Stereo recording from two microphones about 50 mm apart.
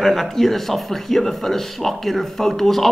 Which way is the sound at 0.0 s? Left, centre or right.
Centre.